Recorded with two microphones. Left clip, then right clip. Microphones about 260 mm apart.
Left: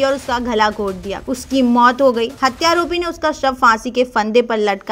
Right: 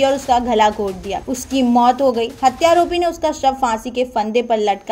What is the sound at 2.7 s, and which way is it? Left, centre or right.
A woman's voice, left.